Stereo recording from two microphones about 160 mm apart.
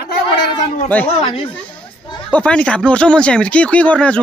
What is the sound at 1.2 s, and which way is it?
Speech, 35° left (ahead or behind).